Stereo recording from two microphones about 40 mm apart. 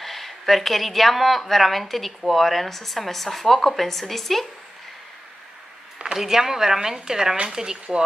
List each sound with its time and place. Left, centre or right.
0.0 s speech: centre
6.1 s speech: centre